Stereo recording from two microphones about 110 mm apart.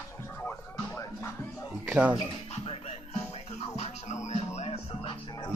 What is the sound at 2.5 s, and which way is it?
Music, 75° left (ahead or behind).